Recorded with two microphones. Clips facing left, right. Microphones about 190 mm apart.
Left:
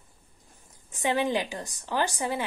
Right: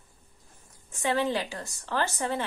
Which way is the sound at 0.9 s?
15° left (ahead or behind).